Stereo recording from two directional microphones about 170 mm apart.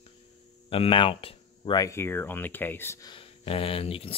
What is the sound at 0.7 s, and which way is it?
Speech, 30° left (ahead or behind).